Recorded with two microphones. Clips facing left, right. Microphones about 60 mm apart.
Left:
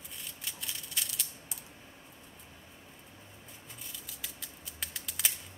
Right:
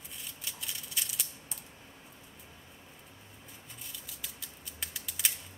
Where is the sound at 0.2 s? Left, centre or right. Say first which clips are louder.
Even; centre.